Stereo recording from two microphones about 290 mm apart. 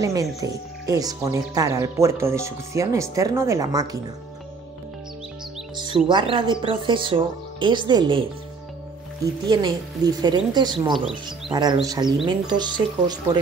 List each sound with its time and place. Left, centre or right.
0.0 s speech: centre
6.0 s speech: centre
9.2 s speech: centre